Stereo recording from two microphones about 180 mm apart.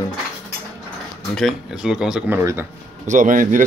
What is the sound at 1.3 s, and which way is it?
Speech, centre (ahead or behind).